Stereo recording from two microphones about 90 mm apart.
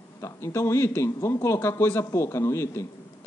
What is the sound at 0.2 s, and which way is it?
Speech, 30° left (ahead or behind).